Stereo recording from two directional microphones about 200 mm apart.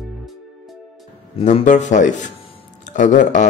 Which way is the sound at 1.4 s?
35° left (ahead or behind).